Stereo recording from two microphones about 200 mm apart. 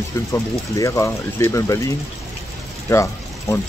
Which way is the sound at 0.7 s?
15° left (ahead or behind).